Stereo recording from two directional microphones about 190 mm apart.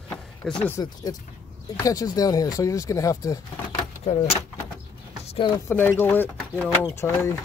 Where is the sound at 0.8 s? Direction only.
20° left (ahead or behind).